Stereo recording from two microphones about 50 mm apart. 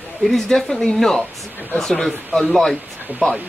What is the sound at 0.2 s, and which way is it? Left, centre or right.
Speech, centre.